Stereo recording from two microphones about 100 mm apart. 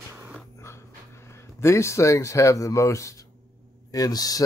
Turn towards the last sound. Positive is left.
turn(degrees=40)  # may be behind; listen again after turning